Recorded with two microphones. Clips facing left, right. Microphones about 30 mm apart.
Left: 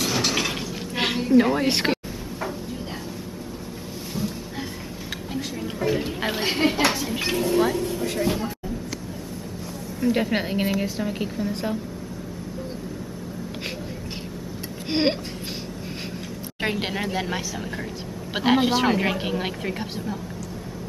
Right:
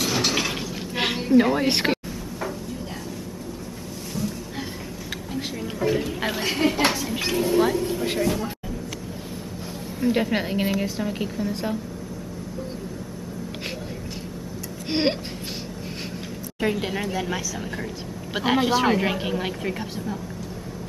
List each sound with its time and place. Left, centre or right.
0.0 s a sound: centre
5.3 s a sound: centre
6.4 s a woman's voice: centre
6.9 s speech: centre
7.8 s speech: centre
8.2 s a woman's voice: centre
9.9 s a woman's voice: centre
10.2 s a woman's voice: centre
14.9 s a sound: centre
17.0 s speech: left
18.3 s a woman's voice: centre